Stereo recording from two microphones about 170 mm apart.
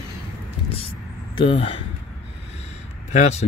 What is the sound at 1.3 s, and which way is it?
Speech, 30° left (ahead or behind).